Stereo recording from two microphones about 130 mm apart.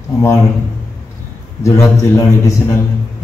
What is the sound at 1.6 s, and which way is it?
Speech, 25° left (ahead or behind).